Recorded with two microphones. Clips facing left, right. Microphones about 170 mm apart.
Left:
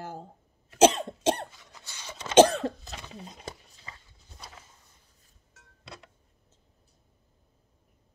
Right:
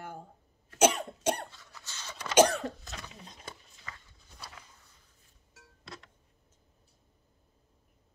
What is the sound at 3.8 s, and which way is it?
Horse, 25° left (ahead or behind).